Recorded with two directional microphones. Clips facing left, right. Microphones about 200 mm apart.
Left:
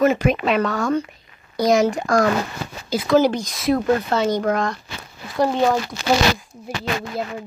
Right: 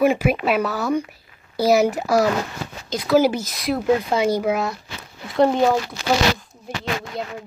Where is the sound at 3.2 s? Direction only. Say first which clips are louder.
Right 1 dB; 5° right (ahead or behind).